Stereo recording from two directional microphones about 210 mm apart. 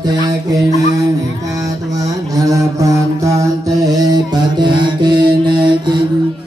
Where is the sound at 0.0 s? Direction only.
20° right (ahead or behind).